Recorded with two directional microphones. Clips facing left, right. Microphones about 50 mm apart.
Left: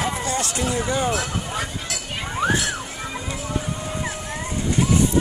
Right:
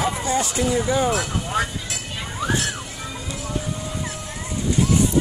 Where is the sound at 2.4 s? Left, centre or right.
Left.